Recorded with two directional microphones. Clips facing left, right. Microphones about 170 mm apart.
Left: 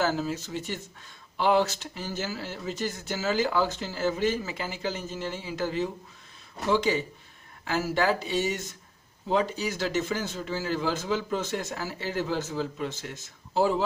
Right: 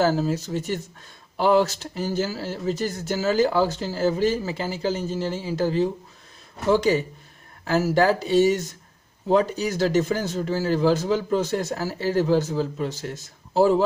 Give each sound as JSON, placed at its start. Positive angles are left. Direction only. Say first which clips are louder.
{"t": 0.0, "sound": "speech", "louder": "right 6 dB", "side_deg": -35}